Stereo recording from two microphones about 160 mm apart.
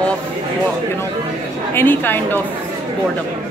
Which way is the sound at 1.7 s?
15° left (ahead or behind).